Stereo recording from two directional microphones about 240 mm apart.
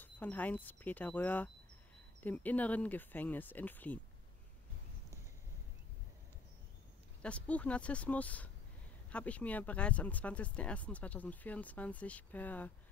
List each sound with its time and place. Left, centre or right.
0.0 s speech: centre
7.2 s speech: centre